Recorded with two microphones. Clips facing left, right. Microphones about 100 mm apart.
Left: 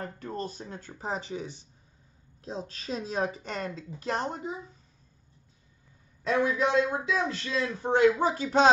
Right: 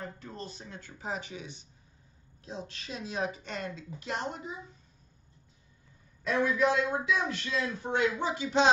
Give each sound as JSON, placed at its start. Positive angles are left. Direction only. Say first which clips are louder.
{"t": 0.0, "sound": "a man's voice", "louder": "left 6 dB", "side_deg": 50}
{"t": 6.2, "sound": "a man's voice", "louder": "left 1 dB", "side_deg": 30}